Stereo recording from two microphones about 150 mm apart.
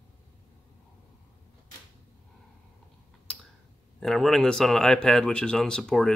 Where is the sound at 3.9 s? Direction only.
Centre (ahead or behind).